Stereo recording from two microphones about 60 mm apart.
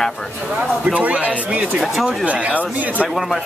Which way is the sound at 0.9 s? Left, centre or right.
Right.